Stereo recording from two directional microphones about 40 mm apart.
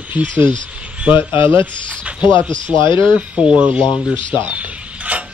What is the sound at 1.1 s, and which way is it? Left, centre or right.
Speech, right.